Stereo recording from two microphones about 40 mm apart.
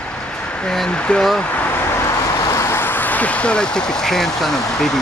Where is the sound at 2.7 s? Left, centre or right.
Left.